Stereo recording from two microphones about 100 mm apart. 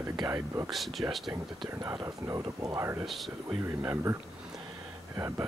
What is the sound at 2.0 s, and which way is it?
Speech, 30° right (ahead or behind).